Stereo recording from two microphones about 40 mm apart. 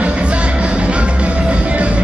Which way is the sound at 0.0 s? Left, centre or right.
Right.